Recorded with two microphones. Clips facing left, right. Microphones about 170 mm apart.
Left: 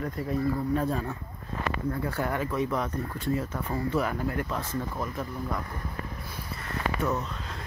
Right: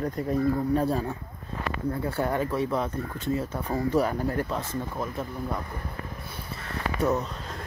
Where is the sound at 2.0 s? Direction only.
25° right (ahead or behind).